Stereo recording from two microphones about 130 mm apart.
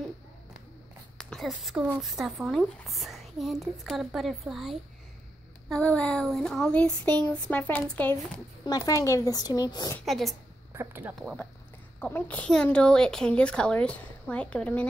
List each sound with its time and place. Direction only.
1.1 s a sound: centre (ahead or behind)
2.0 s speech: centre (ahead or behind)
5.7 s speech: 10° left (ahead or behind)
8.6 s speech: 30° left (ahead or behind)
9.9 s speech: centre (ahead or behind)
10.7 s speech: 20° right (ahead or behind)
12.0 s speech: 15° left (ahead or behind)